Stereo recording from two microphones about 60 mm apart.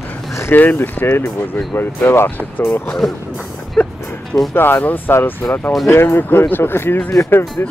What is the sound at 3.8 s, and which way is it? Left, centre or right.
Music, centre.